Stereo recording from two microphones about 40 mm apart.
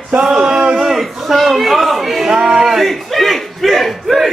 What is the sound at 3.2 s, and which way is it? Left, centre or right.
Speech, centre.